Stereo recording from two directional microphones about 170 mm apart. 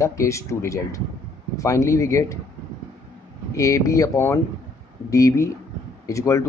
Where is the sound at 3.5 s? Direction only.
20° left (ahead or behind).